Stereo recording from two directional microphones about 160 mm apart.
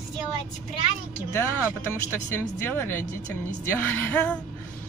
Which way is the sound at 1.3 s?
15° left (ahead or behind).